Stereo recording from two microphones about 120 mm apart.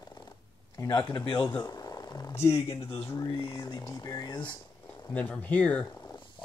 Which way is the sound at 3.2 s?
35° left (ahead or behind).